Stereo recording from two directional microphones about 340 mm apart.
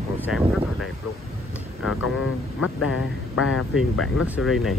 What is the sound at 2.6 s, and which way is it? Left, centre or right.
Speech, left.